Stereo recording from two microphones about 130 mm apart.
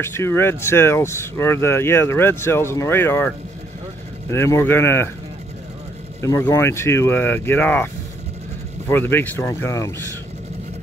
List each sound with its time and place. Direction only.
0.0 s speech: 20° left (ahead or behind)
4.3 s speech: 20° left (ahead or behind)
6.2 s speech: 25° left (ahead or behind)